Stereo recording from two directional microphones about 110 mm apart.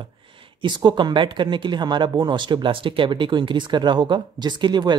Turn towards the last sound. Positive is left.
turn(degrees=-40)  # may be behind; listen again after turning